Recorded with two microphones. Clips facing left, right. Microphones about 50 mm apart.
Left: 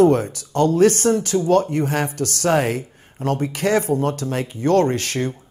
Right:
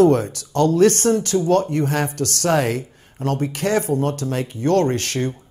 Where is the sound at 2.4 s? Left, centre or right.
Left.